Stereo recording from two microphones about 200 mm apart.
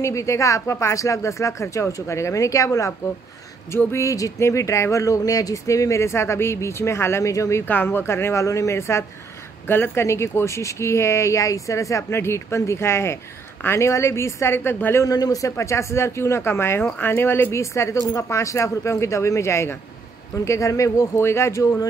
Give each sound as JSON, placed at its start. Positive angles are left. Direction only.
{"t": 0.0, "sound": "speech", "side_deg": 15}